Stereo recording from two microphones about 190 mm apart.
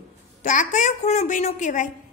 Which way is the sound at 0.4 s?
40° left (ahead or behind).